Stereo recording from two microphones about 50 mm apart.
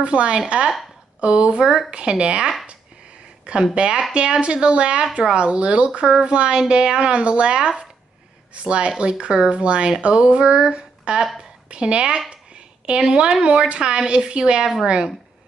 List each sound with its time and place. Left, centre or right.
0.0 s speech: right
3.7 s a woman's voice: centre
12.3 s a sound: right
13.4 s a woman's voice: right